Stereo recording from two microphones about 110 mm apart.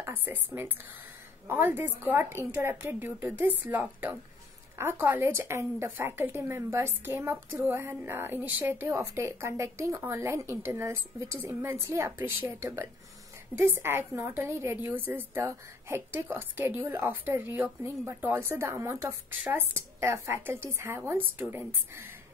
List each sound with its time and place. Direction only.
0.0 s a woman's voice: 20° right (ahead or behind)